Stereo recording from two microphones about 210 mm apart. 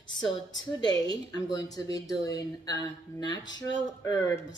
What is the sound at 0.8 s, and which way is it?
Speech, 20° left (ahead or behind).